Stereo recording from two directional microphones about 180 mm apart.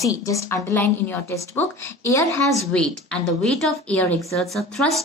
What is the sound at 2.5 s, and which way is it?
A woman's voice, 5° left (ahead or behind).